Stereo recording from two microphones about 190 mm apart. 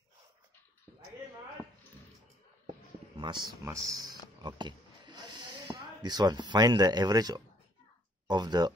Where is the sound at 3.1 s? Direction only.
25° right (ahead or behind).